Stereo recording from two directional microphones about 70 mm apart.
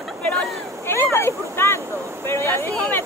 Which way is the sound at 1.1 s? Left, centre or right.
Left.